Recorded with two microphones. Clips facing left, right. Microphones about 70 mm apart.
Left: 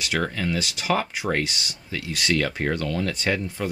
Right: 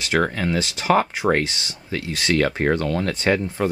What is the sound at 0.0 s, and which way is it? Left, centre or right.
Speech, right.